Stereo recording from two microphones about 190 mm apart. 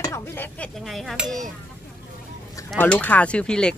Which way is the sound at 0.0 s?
15° left (ahead or behind).